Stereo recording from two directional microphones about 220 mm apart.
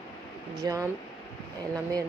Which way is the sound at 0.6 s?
15° right (ahead or behind).